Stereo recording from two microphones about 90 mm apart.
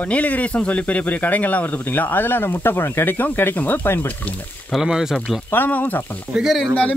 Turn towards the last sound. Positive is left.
turn(degrees=0)  # may be behind; listen again after turning